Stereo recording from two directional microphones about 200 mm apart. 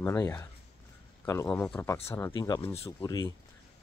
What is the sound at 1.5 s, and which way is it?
Speech, 5° left (ahead or behind).